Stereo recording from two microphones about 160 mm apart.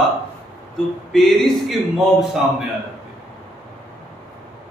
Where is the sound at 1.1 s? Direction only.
Centre (ahead or behind).